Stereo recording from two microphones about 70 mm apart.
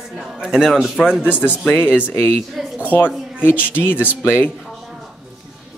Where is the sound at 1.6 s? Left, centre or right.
Left.